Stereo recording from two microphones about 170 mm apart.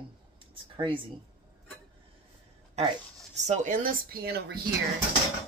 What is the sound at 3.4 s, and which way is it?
Speech, 45° right (ahead or behind).